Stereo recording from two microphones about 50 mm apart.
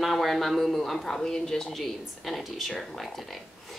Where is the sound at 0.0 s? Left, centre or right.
Centre.